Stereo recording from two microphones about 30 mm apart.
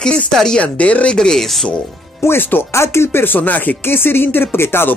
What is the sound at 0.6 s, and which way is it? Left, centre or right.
Speech, left.